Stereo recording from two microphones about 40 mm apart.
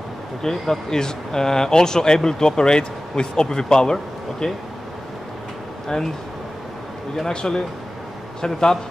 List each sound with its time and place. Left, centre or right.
0.4 s speech: centre
7.2 s speech: centre